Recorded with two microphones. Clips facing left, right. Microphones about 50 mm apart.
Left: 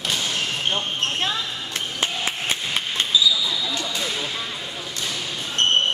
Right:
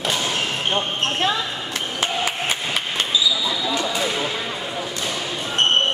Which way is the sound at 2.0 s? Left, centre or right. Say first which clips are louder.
Right 3 dB; right.